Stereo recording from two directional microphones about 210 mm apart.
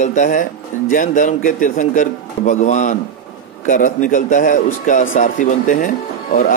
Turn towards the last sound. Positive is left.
turn(degrees=40)  # may be behind; listen again after turning